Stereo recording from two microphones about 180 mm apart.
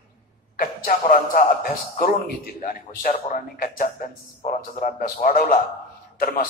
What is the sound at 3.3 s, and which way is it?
A man's voice, 50° left (ahead or behind).